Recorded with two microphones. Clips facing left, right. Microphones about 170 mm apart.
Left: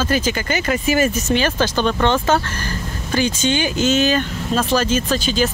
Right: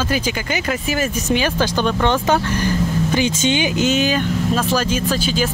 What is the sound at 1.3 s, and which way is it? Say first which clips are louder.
Speech: even; 10° right (ahead or behind).